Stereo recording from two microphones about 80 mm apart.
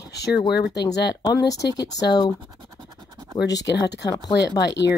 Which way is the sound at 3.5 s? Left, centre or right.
Left.